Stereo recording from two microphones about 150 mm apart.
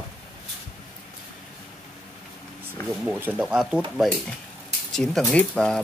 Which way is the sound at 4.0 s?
5° left (ahead or behind).